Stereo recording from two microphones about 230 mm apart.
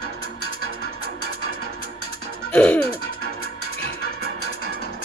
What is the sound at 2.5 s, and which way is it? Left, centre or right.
Music, centre.